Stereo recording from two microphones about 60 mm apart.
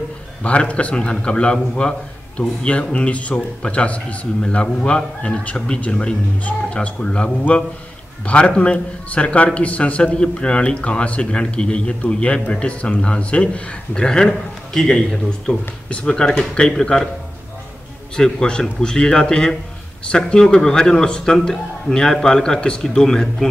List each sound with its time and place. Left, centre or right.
0.4 s a man's voice: left
18.1 s a man's voice: centre